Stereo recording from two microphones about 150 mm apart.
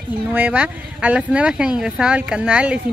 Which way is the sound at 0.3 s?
10° right (ahead or behind).